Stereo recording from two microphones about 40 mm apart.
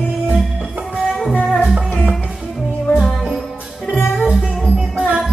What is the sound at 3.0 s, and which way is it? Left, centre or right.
Music, centre.